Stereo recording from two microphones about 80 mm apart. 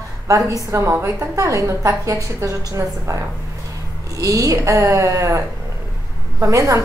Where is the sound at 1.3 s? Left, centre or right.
Right.